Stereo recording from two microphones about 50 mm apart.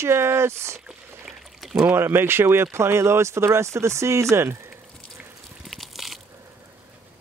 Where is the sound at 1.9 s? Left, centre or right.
Right.